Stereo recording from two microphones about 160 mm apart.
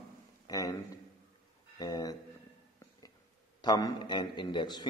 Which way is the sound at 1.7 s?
25° left (ahead or behind).